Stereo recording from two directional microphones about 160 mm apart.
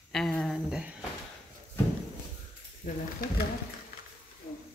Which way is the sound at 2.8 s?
65° left (ahead or behind).